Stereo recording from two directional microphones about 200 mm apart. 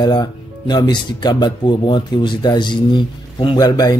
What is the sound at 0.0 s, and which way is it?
Speech, 20° left (ahead or behind).